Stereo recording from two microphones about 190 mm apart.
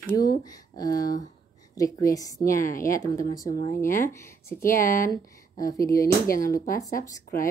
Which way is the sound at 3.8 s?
15° left (ahead or behind).